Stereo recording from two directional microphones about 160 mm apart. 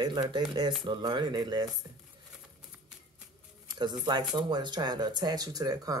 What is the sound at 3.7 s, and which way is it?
Speech, 25° right (ahead or behind).